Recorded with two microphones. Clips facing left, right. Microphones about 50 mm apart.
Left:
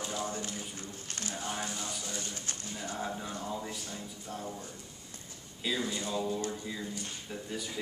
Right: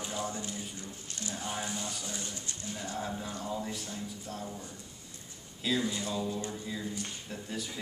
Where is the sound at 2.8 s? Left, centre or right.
Centre.